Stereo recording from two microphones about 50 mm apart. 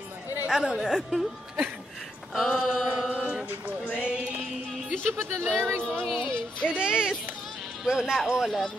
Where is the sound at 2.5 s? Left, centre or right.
Centre.